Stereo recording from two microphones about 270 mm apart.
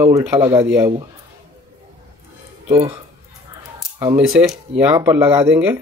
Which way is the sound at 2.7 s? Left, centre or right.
Right.